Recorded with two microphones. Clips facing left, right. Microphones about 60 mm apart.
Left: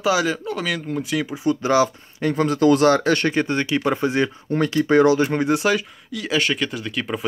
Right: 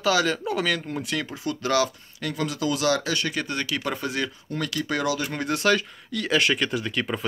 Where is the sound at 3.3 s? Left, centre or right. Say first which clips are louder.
Left 7 dB; left.